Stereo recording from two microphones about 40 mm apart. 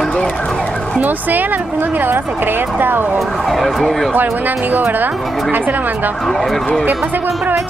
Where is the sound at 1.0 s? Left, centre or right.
Right.